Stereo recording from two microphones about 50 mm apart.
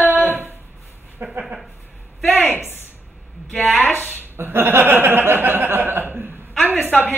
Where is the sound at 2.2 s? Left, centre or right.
Left.